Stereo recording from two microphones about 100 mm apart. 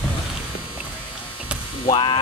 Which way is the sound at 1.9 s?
55° left (ahead or behind).